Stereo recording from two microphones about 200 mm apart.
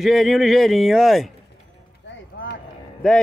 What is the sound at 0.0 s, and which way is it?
Speech, centre (ahead or behind).